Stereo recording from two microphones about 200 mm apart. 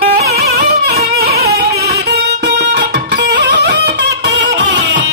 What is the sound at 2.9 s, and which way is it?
Music, 55° right (ahead or behind).